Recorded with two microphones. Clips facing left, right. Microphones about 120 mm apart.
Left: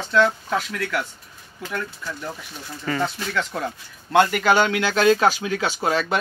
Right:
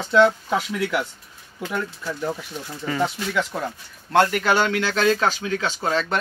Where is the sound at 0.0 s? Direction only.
15° right (ahead or behind).